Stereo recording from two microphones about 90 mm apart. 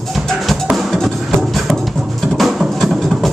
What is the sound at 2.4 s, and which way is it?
Music, centre (ahead or behind).